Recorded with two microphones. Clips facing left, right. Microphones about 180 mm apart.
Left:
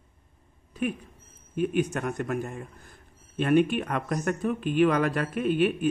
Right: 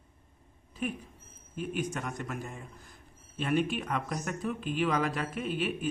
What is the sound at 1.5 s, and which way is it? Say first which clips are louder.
A man's voice: left 8 dB; 60° left (ahead or behind).